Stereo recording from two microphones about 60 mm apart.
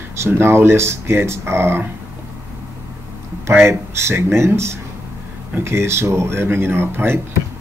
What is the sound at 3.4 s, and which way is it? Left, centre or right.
Speech, right.